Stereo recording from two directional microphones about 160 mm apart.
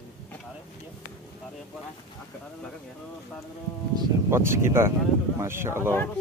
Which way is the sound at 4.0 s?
15° right (ahead or behind).